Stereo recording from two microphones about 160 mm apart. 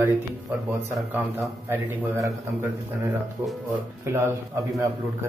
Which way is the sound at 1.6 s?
15° right (ahead or behind).